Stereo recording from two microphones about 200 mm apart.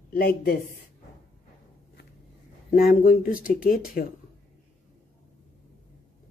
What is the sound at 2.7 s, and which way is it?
A woman's voice, 45° left (ahead or behind).